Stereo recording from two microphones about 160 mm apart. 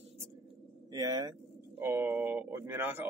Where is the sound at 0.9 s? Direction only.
25° right (ahead or behind).